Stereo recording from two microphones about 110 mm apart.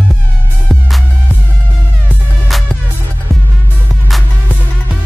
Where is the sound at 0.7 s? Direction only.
5° left (ahead or behind).